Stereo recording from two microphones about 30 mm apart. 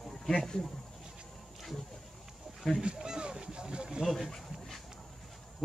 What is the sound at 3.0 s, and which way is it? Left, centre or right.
Boat, right.